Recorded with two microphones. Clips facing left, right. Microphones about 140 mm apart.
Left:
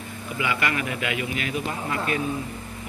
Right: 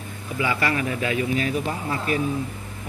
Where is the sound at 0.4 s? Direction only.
35° right (ahead or behind).